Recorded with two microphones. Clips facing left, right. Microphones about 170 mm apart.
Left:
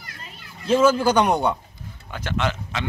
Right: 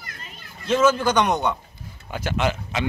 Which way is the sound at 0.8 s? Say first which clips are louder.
Left 1 dB; 10° left (ahead or behind).